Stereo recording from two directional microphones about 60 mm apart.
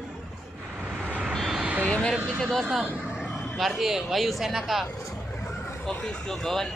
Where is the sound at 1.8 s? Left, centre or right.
Left.